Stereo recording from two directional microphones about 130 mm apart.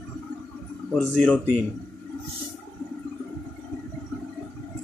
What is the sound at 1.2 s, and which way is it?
Speech, centre (ahead or behind).